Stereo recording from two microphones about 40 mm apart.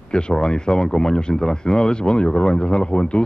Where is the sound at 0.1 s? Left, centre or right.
Centre.